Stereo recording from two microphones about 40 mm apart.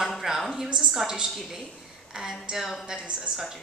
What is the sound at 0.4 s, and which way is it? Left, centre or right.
Speech, centre.